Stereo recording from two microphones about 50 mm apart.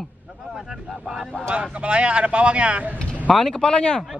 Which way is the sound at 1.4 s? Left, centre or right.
Right.